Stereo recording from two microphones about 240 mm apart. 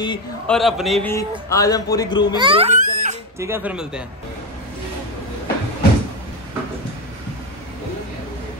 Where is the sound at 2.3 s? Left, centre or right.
Right.